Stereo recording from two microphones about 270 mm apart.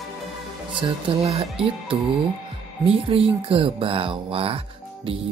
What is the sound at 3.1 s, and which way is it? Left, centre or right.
Speech, centre.